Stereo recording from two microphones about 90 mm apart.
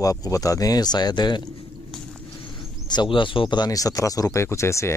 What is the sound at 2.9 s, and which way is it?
Speech, 60° left (ahead or behind).